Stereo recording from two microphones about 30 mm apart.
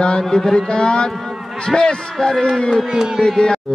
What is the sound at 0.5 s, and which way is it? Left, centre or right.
Speech, left.